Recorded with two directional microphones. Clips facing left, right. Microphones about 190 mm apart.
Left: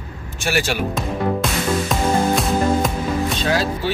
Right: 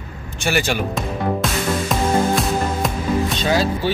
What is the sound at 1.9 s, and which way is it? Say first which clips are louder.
Music: even; centre (ahead or behind).